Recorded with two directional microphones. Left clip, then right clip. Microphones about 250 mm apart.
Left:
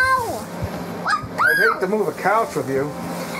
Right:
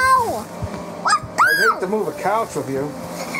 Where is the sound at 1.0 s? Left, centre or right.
Right.